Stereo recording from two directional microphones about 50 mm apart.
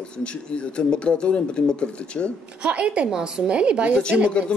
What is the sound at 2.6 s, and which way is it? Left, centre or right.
A woman's voice, right.